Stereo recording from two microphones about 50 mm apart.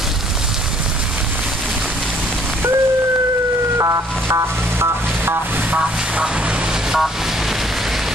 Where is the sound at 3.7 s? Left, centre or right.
Right.